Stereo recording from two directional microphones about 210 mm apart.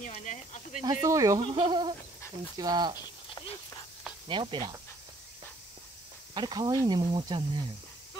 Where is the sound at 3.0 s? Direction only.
25° left (ahead or behind).